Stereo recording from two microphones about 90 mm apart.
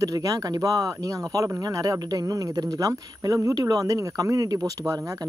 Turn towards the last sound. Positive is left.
turn(degrees=-40)  # may be behind; listen again after turning